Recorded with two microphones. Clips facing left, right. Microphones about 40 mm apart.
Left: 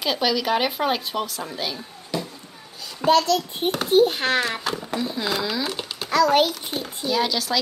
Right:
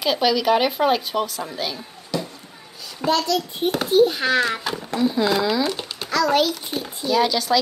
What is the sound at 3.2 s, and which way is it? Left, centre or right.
Speech, left.